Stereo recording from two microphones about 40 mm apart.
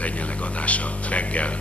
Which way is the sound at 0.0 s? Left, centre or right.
Left.